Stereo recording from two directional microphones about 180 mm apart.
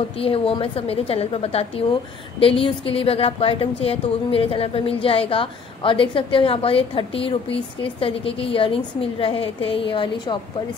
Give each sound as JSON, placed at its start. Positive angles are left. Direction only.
{"t": 0.2, "sound": "a woman's voice", "side_deg": 30}